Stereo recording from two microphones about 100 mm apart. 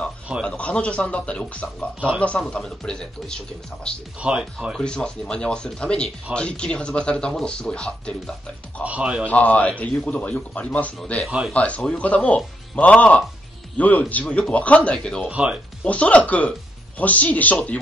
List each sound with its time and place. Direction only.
0.4 s speech: 10° left (ahead or behind)
4.2 s speech: 10° right (ahead or behind)
4.7 s speech: 10° left (ahead or behind)
8.8 s speech: 10° right (ahead or behind)
9.2 s speech: 15° left (ahead or behind)
11.0 s a man's voice: 5° left (ahead or behind)
11.2 s speech: 10° right (ahead or behind)
11.5 s speech: 10° left (ahead or behind)
15.2 s speech: 10° right (ahead or behind)
15.8 s speech: 15° left (ahead or behind)